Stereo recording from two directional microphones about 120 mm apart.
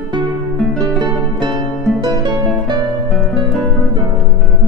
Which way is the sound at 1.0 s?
40° right (ahead or behind).